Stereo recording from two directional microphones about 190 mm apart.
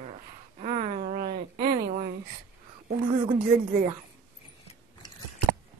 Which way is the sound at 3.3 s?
45° right (ahead or behind).